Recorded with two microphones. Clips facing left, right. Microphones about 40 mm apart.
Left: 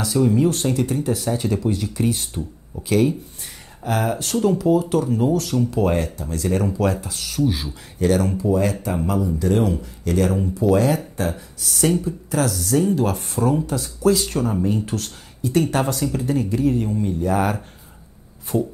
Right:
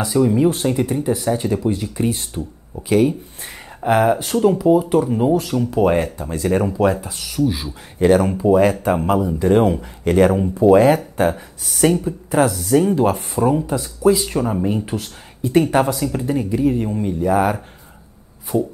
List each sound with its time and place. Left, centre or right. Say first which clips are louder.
0.0 s speech: right 2 dB; centre
7.4 s speech: right 2 dB; centre
8.0 s speech: right 5 dB; right
15.8 s speech: right 3 dB; centre
17.3 s speech: right 5 dB; centre